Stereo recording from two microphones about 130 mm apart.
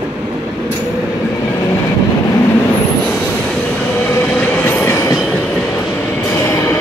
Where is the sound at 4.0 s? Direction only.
15° left (ahead or behind).